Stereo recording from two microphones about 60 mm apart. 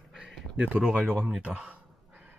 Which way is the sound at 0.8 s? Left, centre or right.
Centre.